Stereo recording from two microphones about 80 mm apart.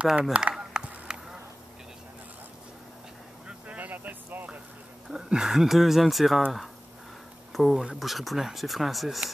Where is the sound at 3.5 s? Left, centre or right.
Centre.